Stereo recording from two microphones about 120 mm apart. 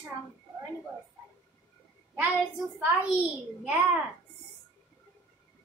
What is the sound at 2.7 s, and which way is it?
Speech, 15° right (ahead or behind).